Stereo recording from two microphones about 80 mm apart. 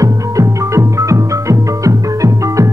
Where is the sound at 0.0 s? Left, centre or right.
Right.